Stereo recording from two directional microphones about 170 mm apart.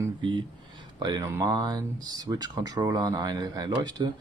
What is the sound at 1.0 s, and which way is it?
Speech, 25° right (ahead or behind).